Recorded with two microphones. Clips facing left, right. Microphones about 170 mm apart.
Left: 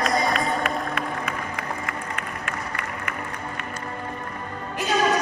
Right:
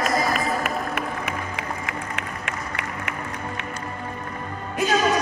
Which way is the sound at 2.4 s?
70° right (ahead or behind).